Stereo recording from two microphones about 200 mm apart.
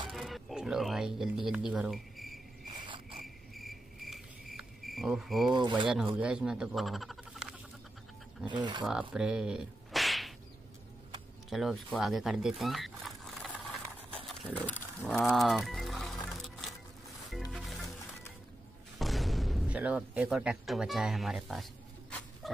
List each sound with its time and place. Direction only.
0.1 s music: centre (ahead or behind)
3.5 s cricket: centre (ahead or behind)
5.5 s speech: 25° right (ahead or behind)
6.1 s speech: 5° right (ahead or behind)
11.5 s speech: centre (ahead or behind)
14.1 s music: centre (ahead or behind)
18.9 s speech: centre (ahead or behind)